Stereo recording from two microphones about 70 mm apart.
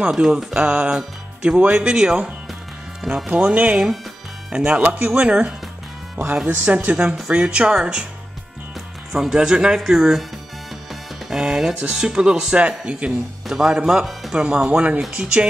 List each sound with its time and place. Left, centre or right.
0.0 s speech: centre
4.6 s speech: centre
9.1 s speech: centre
10.9 s music: centre
11.8 s speech: centre
14.4 s speech: centre